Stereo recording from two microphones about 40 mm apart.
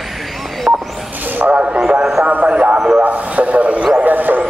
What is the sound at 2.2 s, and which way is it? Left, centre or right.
Speech, right.